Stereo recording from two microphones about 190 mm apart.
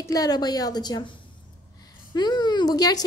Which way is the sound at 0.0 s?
20° left (ahead or behind).